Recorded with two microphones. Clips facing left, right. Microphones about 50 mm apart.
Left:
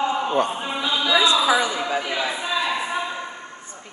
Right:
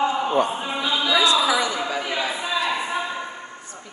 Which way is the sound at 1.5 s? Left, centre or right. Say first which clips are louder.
Left 2 dB; left.